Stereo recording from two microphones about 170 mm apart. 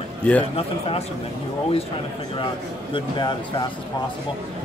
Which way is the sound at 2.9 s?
25° left (ahead or behind).